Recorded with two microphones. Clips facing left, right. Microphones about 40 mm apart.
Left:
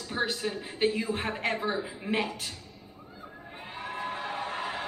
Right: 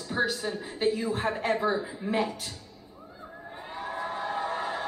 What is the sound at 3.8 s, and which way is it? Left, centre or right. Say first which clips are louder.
Crowd: right 2 dB; left.